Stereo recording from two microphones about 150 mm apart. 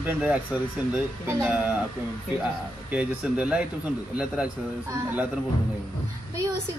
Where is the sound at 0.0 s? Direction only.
10° right (ahead or behind).